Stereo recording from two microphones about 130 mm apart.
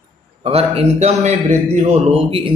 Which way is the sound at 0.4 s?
50° right (ahead or behind).